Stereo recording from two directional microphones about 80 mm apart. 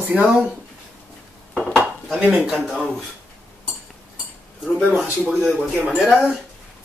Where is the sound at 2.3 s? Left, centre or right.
Centre.